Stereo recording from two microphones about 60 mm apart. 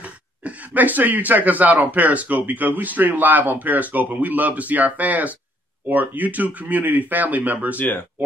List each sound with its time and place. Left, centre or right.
0.0 s speech: right
7.7 s speech: left